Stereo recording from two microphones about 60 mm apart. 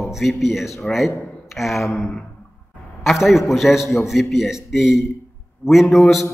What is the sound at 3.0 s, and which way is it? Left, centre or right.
Speech, centre.